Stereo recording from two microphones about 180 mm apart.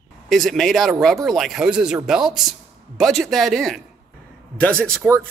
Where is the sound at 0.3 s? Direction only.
Centre (ahead or behind).